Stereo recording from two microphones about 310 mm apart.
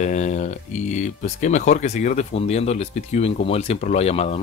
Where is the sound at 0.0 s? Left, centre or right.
Left.